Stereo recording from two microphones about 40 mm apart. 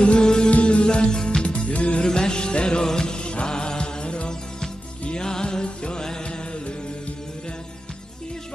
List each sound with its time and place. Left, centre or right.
0.0 s music: left
0.5 s music: left
0.8 s music: centre
1.4 s music: left
2.0 s music: centre